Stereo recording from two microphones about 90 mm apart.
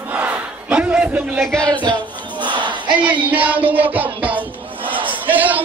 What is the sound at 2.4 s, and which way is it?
Battle cry, 60° right (ahead or behind).